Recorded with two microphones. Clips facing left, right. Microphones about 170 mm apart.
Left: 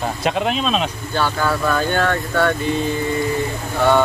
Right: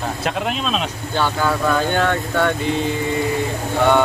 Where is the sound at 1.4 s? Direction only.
15° right (ahead or behind).